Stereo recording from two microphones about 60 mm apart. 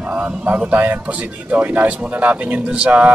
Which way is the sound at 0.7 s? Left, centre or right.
Right.